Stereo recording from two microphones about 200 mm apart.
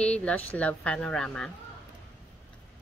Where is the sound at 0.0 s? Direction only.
5° left (ahead or behind).